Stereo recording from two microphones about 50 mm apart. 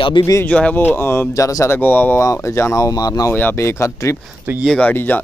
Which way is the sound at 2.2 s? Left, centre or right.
Left.